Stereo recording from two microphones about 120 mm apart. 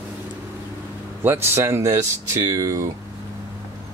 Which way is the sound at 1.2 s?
20° right (ahead or behind).